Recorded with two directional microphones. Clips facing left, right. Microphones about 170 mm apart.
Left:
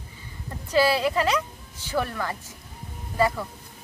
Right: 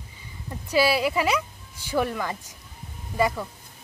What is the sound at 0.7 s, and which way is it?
Speech, 10° right (ahead or behind).